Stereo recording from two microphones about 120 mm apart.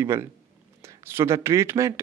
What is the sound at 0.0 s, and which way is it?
Speech, 20° right (ahead or behind).